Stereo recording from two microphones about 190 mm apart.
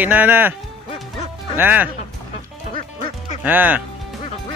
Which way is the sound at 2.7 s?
45° left (ahead or behind).